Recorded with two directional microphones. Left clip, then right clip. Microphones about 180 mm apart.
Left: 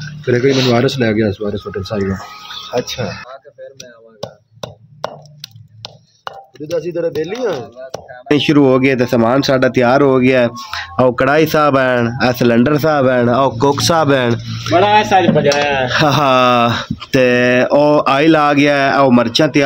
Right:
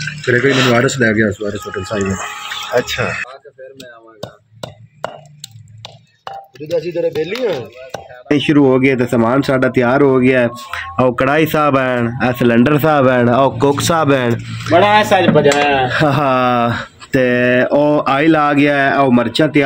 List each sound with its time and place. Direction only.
0.2 s speech: 45° left (ahead or behind)
0.5 s speech: centre (ahead or behind)
0.7 s speech: 40° left (ahead or behind)
2.1 s speech: 5° left (ahead or behind)
6.7 s speech: 10° left (ahead or behind)
12.7 s speech: 15° right (ahead or behind)
14.8 s speech: 45° right (ahead or behind)
15.9 s speech: centre (ahead or behind)